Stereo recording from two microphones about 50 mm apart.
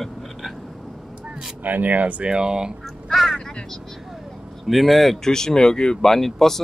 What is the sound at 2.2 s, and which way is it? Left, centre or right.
Speech, centre.